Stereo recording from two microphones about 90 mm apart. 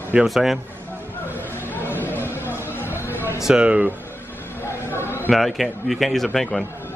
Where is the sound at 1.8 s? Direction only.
25° left (ahead or behind).